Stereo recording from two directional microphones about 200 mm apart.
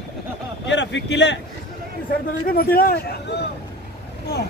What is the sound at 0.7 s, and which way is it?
Speech, 65° left (ahead or behind).